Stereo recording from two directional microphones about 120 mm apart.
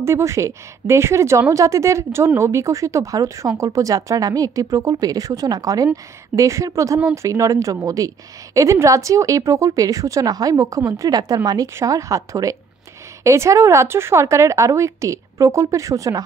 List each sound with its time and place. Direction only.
0.0 s a woman's voice: 25° right (ahead or behind)